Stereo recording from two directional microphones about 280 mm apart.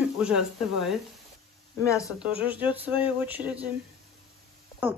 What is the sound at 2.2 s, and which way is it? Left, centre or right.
Speech, centre.